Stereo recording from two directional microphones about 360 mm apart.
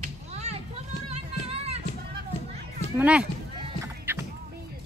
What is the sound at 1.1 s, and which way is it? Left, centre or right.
Music, centre.